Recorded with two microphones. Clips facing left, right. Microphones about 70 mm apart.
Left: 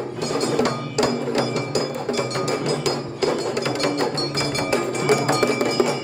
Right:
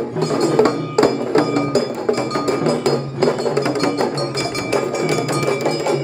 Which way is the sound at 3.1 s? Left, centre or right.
Right.